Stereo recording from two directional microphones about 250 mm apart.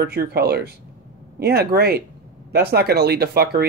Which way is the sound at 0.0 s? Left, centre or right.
Right.